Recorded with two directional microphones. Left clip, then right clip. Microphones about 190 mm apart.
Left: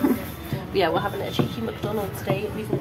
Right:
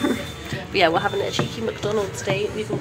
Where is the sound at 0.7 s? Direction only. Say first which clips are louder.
Right 4 dB; 15° right (ahead or behind).